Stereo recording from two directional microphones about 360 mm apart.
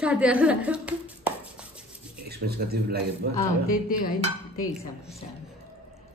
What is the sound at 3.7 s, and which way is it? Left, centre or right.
Speech, left.